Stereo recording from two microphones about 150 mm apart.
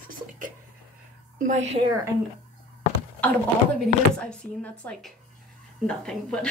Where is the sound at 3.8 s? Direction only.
5° left (ahead or behind).